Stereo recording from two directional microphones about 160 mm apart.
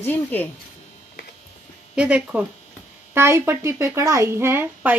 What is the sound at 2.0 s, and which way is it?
Speech, 10° right (ahead or behind).